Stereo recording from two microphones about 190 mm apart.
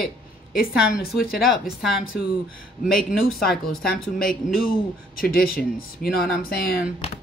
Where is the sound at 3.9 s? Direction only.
50° left (ahead or behind).